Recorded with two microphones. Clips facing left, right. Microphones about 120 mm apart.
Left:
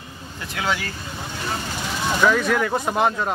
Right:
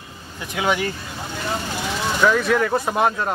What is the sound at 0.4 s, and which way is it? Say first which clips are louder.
Speech: right 4 dB; 15° right (ahead or behind).